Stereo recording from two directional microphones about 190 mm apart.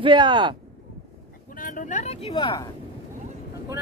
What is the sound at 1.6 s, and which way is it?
Speech, 40° left (ahead or behind).